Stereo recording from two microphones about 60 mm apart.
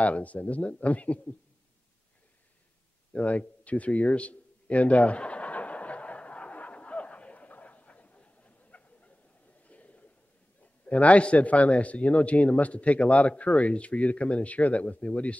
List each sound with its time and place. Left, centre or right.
0.0 s a man's voice: left
3.1 s a sound: left
10.9 s a man's voice: left